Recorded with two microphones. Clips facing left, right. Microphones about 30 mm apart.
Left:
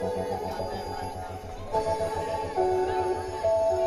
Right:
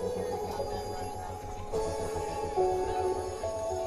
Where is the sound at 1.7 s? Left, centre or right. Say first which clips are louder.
Left 6 dB; left.